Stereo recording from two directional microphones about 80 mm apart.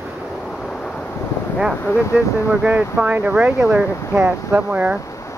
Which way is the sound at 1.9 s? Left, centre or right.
Left.